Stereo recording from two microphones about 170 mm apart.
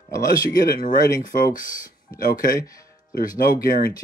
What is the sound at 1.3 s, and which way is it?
Speech, 55° left (ahead or behind).